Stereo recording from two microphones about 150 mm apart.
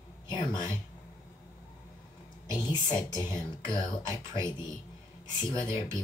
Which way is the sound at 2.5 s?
30° left (ahead or behind).